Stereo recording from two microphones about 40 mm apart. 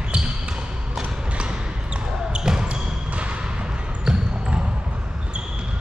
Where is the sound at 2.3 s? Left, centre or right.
Right.